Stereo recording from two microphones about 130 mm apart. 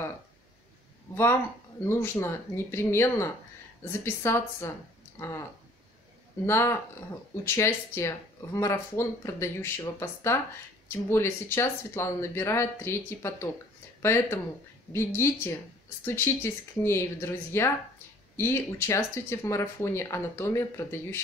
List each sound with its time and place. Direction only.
1.1 s speech: 20° left (ahead or behind)
6.4 s speech: 20° left (ahead or behind)